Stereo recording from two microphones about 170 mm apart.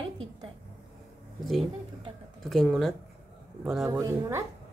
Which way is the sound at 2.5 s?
Centre (ahead or behind).